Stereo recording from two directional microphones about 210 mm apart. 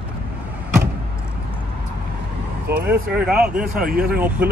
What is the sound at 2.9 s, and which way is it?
Speech, 5° right (ahead or behind).